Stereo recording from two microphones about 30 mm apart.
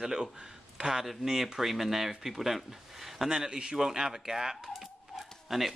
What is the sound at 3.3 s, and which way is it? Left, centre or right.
A man's voice, right.